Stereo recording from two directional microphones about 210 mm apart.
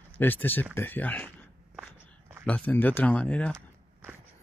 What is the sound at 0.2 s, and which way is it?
Speech, 10° left (ahead or behind).